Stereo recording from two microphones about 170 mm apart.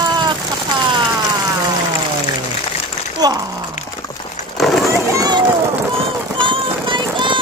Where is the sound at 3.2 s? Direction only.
25° right (ahead or behind).